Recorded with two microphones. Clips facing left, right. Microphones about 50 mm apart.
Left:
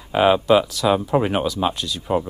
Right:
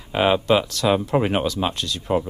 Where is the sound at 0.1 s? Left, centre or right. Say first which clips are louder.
Left 3 dB; centre.